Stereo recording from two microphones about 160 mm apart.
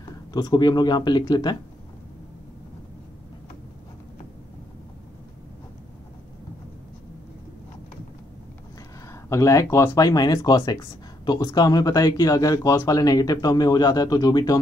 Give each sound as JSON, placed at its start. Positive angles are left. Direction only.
{"t": 0.3, "sound": "speech", "side_deg": 25}
{"t": 9.1, "sound": "speech", "side_deg": 20}